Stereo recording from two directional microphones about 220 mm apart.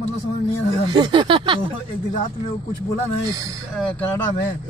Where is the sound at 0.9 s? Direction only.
20° right (ahead or behind).